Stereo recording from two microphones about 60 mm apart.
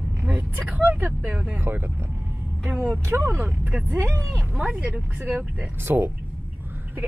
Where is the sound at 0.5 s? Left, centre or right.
Right.